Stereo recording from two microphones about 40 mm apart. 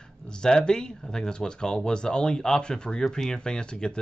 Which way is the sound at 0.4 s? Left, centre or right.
Centre.